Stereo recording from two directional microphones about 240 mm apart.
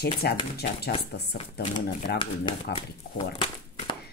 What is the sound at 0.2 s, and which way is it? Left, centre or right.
Speech, left.